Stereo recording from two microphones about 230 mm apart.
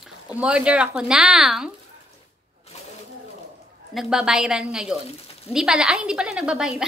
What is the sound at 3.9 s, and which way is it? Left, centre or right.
Speech, centre.